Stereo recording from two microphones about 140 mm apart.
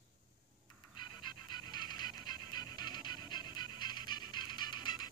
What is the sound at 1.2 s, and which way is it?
Pant, 30° left (ahead or behind).